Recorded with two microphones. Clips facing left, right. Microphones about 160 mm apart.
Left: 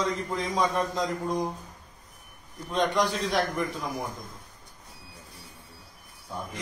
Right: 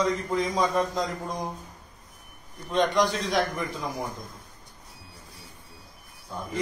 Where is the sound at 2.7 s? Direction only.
Centre (ahead or behind).